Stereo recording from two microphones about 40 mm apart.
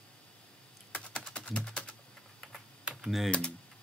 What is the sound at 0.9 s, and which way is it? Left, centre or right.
Typing, left.